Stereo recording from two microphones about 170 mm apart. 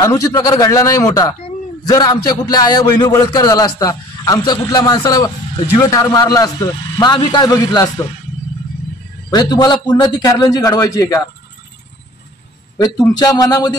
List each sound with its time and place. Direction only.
0.0 s a man's voice: 20° left (ahead or behind)
9.3 s a man's voice: 25° left (ahead or behind)
12.7 s a man's voice: 25° left (ahead or behind)